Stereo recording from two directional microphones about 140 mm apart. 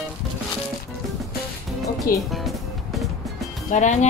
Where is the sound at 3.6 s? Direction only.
60° left (ahead or behind).